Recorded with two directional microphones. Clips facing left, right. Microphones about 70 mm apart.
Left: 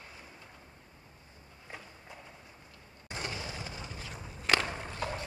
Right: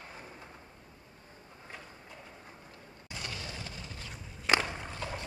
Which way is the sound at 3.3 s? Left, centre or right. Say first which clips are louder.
Left 2 dB; centre.